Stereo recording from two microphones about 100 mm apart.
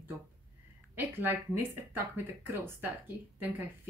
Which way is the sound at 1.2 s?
20° right (ahead or behind).